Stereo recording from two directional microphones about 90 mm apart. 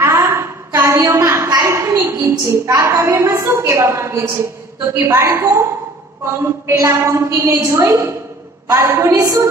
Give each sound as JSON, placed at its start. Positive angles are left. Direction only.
{"t": 0.0, "sound": "a sound", "side_deg": -30}
{"t": 2.7, "sound": "a woman's voice", "side_deg": -35}
{"t": 6.7, "sound": "a woman's voice", "side_deg": -30}